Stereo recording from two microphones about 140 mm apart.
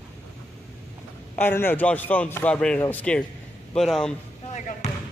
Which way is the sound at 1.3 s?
15° left (ahead or behind).